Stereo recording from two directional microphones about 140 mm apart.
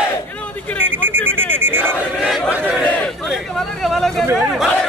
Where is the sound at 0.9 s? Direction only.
15° right (ahead or behind).